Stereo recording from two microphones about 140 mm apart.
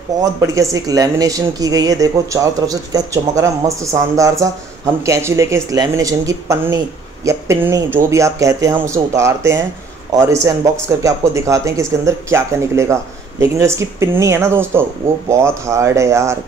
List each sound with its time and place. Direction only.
0.2 s speech: 25° right (ahead or behind)